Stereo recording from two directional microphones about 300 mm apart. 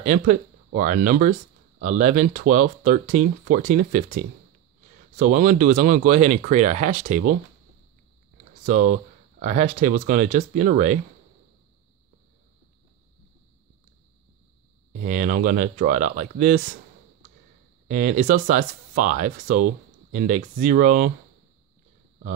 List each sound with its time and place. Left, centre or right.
0.0 s speech: right
9.4 s speech: right
14.9 s speech: right
17.8 s speech: right